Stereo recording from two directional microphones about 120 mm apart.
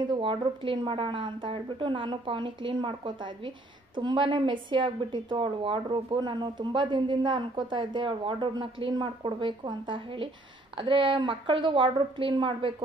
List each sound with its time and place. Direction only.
0.2 s a woman's voice: 45° right (ahead or behind)